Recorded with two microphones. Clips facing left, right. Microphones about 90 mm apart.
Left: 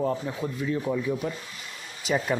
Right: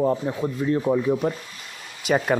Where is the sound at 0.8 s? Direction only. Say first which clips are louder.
Right 6 dB; 35° right (ahead or behind).